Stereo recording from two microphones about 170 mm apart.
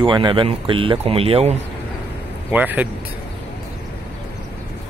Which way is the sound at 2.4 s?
10° right (ahead or behind).